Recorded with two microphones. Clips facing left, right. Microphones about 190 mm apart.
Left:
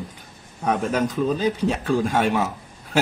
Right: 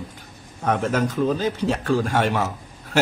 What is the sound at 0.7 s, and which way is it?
A man's voice, 15° left (ahead or behind).